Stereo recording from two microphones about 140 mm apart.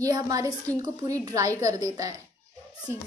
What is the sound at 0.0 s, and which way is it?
A woman's voice, 25° right (ahead or behind).